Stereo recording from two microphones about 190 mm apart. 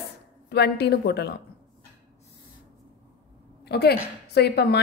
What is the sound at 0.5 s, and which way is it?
Speech, 60° left (ahead or behind).